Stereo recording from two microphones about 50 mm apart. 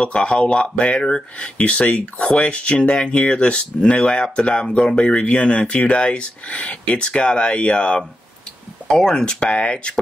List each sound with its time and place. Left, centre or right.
0.0 s speech: left